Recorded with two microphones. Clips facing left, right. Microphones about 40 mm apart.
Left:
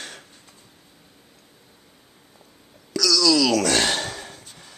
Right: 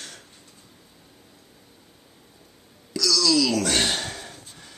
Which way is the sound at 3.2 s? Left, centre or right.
Left.